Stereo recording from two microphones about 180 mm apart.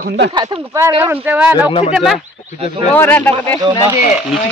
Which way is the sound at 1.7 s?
35° left (ahead or behind).